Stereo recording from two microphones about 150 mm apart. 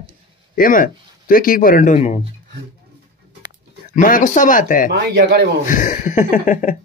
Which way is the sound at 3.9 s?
60° left (ahead or behind).